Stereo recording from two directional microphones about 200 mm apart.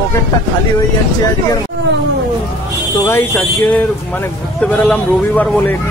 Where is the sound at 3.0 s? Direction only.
10° left (ahead or behind).